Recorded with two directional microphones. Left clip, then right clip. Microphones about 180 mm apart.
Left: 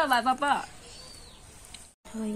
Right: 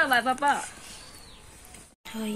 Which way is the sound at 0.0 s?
75° left (ahead or behind).